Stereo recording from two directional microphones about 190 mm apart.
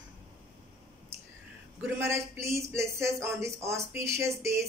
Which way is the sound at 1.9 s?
15° right (ahead or behind).